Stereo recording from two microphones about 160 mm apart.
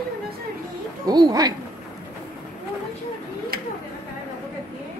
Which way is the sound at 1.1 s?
25° right (ahead or behind).